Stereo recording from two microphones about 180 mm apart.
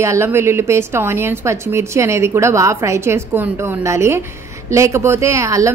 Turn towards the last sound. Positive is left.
turn(degrees=-15)  # may be behind; listen again after turning